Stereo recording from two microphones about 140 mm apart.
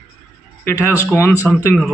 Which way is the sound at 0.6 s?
15° left (ahead or behind).